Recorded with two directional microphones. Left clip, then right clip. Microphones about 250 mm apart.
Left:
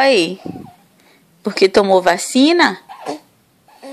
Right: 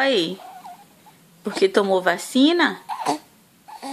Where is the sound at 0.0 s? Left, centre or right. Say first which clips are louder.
Left 7 dB; centre.